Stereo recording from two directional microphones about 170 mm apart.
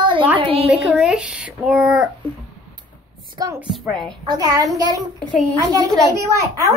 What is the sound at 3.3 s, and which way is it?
A child's voice, 20° right (ahead or behind).